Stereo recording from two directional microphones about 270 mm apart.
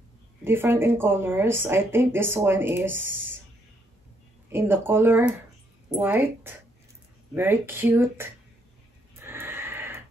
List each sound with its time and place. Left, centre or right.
0.4 s speech: centre
4.5 s speech: centre
9.2 s a sound: centre